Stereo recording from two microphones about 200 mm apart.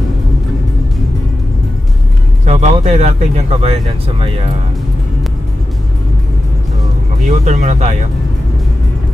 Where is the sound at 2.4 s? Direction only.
35° right (ahead or behind).